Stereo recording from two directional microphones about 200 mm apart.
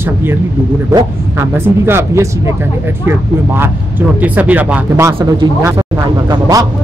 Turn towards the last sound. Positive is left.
turn(degrees=-20)  # may be behind; listen again after turning